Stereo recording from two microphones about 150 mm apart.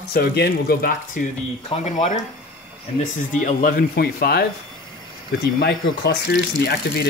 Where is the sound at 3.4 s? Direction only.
70° left (ahead or behind); by 4.4 s 85° left.